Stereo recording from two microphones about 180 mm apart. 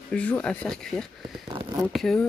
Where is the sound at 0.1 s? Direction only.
5° left (ahead or behind).